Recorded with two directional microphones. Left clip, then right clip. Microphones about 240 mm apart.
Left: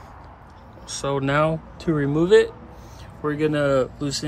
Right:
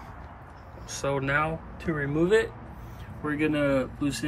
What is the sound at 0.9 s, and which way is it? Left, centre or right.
Speech, centre.